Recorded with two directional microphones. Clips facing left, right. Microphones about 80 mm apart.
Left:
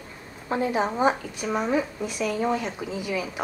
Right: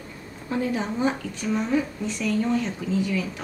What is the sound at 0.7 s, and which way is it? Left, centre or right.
Speech, left.